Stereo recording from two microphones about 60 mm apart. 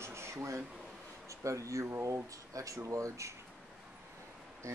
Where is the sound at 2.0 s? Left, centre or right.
Right.